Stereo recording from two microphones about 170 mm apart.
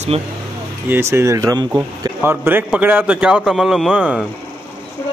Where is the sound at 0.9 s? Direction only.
15° right (ahead or behind).